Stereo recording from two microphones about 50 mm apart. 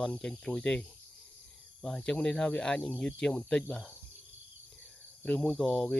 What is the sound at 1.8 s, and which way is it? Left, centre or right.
Speech, centre.